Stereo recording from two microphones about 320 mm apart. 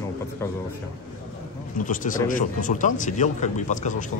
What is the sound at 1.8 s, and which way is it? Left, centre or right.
Speech, left.